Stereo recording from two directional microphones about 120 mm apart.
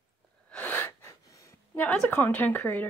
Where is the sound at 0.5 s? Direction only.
15° left (ahead or behind).